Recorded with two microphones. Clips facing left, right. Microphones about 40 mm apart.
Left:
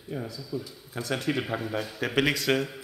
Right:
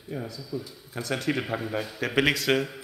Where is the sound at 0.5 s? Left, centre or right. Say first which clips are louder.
Even; centre.